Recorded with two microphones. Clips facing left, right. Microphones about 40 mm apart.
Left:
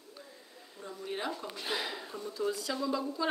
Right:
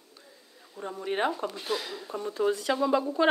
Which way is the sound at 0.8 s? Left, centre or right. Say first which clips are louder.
Right 9 dB; right.